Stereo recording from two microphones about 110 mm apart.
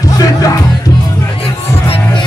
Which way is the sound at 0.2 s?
30° left (ahead or behind).